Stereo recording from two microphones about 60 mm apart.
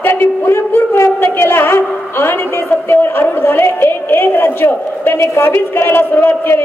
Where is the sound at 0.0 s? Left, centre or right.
Left.